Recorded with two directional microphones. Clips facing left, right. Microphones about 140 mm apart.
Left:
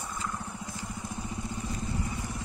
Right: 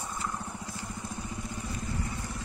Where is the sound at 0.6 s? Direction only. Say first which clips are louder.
Left 1 dB; 20° left (ahead or behind).